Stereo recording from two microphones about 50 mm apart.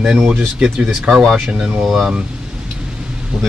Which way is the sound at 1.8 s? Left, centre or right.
Centre.